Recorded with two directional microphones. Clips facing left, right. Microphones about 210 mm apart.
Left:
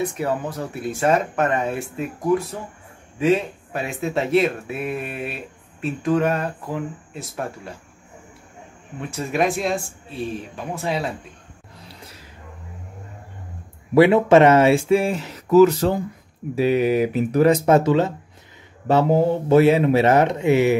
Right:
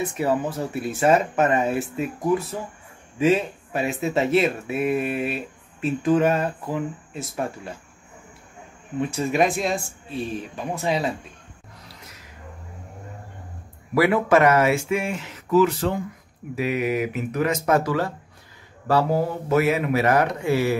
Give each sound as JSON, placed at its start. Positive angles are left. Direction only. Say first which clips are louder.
{"t": 0.0, "sound": "speech", "louder": "right 1 dB", "side_deg": -5}
{"t": 9.1, "sound": "speech", "louder": "left 1 dB", "side_deg": 0}
{"t": 13.9, "sound": "speech", "louder": "left 5 dB", "side_deg": 25}